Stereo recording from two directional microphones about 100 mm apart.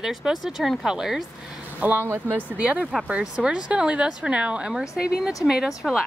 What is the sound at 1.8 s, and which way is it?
Speech, 20° right (ahead or behind).